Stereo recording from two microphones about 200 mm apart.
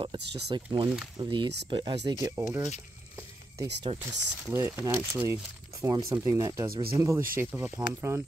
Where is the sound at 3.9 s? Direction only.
25° right (ahead or behind).